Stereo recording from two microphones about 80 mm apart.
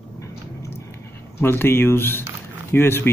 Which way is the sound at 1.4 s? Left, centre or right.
Left.